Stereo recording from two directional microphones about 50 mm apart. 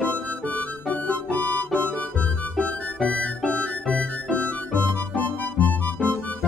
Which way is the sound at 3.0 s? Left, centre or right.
Left.